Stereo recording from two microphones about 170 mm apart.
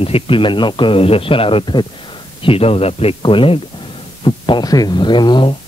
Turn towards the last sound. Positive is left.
turn(degrees=25)  # may be behind; listen again after turning